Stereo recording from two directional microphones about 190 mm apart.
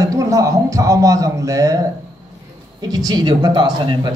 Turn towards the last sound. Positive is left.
turn(degrees=-25)  # may be behind; listen again after turning